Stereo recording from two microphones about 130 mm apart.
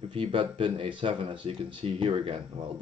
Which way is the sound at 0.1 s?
40° right (ahead or behind).